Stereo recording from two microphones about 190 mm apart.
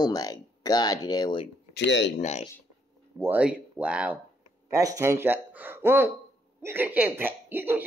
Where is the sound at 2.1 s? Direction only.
35° left (ahead or behind).